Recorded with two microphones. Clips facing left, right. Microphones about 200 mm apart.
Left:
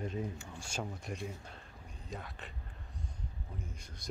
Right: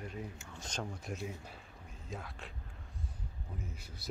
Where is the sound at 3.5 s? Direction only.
5° right (ahead or behind).